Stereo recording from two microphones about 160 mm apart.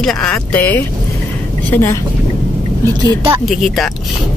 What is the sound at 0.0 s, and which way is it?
Speech, 5° left (ahead or behind).